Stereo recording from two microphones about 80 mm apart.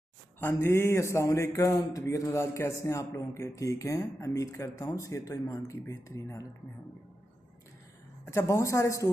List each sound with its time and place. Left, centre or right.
0.4 s a man's voice: left
1.7 s a man's voice: left
8.3 s a man's voice: left